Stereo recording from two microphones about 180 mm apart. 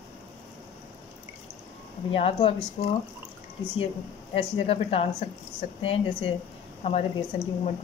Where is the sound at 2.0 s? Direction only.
30° left (ahead or behind).